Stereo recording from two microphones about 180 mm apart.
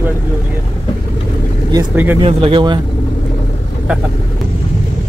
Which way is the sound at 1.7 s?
10° right (ahead or behind).